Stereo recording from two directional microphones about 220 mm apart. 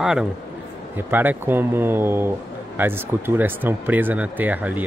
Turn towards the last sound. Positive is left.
turn(degrees=-5)  # may be behind; listen again after turning